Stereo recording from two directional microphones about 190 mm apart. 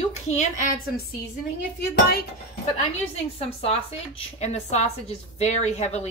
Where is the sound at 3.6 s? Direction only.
30° left (ahead or behind).